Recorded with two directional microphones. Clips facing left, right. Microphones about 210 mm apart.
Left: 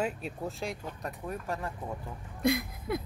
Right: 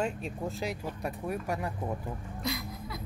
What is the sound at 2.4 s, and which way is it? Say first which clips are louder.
Speech: left 9 dB; 55° left (ahead or behind).